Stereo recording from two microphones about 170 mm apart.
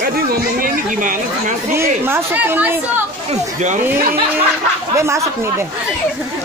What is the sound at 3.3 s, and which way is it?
Speech, 45° right (ahead or behind).